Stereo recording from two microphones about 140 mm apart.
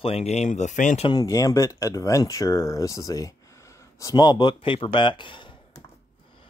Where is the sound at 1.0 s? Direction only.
25° left (ahead or behind).